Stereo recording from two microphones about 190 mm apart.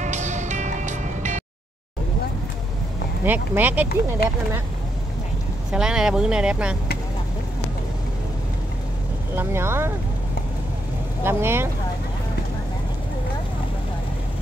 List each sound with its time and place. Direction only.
0.0 s music: 40° right (ahead or behind)
3.3 s speech: 10° right (ahead or behind)
5.7 s speech: 5° right (ahead or behind)
9.3 s speech: 10° right (ahead or behind)
11.2 s speech: 10° right (ahead or behind)